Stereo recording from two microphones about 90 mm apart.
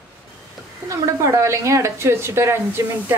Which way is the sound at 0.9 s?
35° right (ahead or behind).